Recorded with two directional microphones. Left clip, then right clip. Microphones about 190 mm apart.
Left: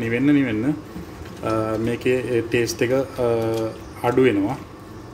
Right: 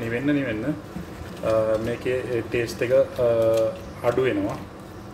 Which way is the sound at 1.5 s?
45° left (ahead or behind).